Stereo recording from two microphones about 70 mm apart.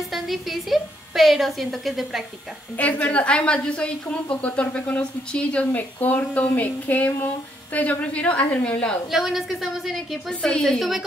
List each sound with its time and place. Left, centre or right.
0.1 s a woman's voice: centre
2.8 s a woman's voice: left
9.1 s a woman's voice: centre
10.4 s a woman's voice: centre
10.8 s a woman's voice: centre